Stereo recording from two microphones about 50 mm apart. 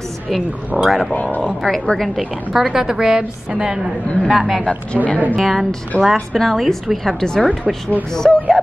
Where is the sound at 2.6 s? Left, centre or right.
Centre.